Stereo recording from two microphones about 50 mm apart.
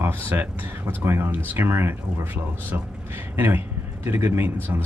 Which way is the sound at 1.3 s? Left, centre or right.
Right.